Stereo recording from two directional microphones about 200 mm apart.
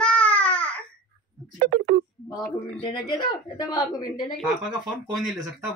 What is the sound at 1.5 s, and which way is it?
Speech, 50° right (ahead or behind).